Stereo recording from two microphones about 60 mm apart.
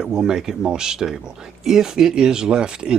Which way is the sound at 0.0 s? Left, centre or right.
Centre.